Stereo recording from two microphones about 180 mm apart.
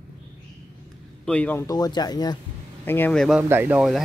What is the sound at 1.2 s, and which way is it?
Speech, 5° left (ahead or behind).